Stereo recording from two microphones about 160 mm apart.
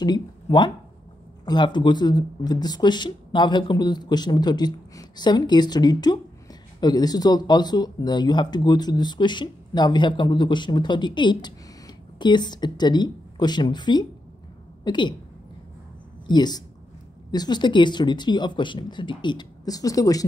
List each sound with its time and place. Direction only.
0.0 s speech: 25° left (ahead or behind)
16.3 s speech: 25° left (ahead or behind)